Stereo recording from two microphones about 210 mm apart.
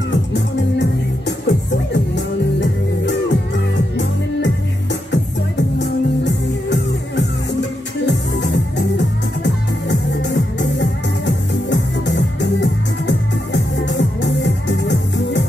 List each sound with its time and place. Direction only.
0.1 s music: 55° left (ahead or behind)